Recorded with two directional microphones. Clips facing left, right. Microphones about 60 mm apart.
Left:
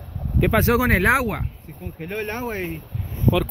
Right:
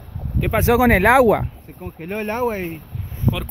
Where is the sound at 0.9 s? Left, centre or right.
Right.